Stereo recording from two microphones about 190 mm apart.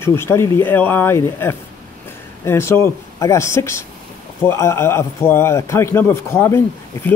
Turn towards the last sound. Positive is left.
turn(degrees=10)  # may be behind; listen again after turning